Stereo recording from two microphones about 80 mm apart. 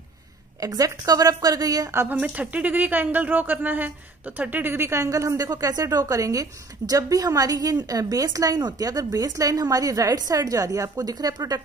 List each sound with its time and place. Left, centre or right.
0.6 s a woman's voice: right
2.0 s a woman's voice: right